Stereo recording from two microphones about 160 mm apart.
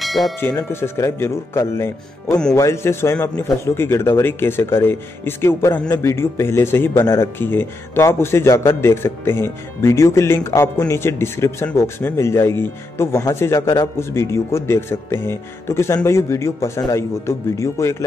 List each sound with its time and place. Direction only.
0.0 s church bell: centre (ahead or behind)
0.4 s a man's voice: 15° left (ahead or behind)